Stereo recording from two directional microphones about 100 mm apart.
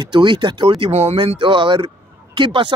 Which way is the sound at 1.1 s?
55° right (ahead or behind).